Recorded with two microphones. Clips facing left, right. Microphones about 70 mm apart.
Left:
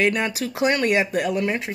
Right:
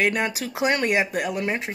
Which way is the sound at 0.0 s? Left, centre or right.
Centre.